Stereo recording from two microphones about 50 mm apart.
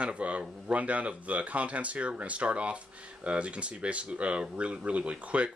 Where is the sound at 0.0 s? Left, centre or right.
Right.